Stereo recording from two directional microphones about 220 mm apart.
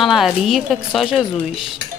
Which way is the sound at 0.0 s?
Centre (ahead or behind).